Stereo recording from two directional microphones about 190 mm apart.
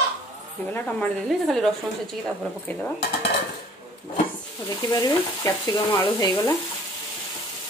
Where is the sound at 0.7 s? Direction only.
5° left (ahead or behind).